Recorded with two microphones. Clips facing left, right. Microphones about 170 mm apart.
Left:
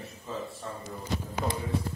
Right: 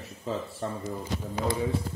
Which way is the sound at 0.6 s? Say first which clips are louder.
Right 6 dB; 90° right.